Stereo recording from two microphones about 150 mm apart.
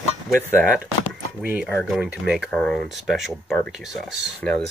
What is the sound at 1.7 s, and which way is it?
Speech, 10° left (ahead or behind).